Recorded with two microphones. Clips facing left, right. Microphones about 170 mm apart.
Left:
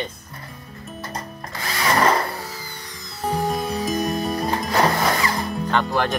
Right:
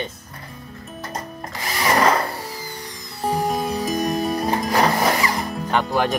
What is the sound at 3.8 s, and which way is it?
Music, centre (ahead or behind).